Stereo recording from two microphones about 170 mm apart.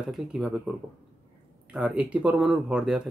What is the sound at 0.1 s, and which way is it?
Speech, 5° right (ahead or behind).